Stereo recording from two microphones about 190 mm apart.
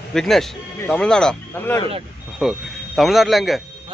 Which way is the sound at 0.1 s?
Centre (ahead or behind).